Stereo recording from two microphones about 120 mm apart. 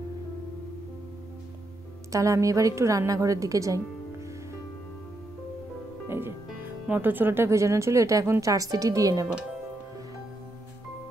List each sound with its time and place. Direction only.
2.1 s a woman's voice: 25° right (ahead or behind)
6.0 s music: 20° right (ahead or behind)
6.9 s a woman's voice: 15° right (ahead or behind)